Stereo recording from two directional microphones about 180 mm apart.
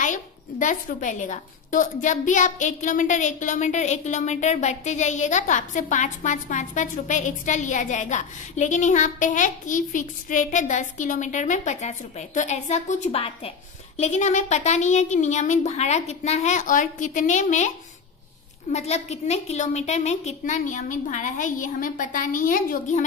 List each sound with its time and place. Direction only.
0.0 s a woman's voice: 45° left (ahead or behind)